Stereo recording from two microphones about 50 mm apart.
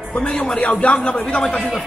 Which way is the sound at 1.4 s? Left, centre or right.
Centre.